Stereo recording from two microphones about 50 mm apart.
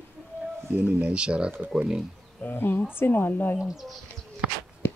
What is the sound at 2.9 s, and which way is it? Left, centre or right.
Speech, left.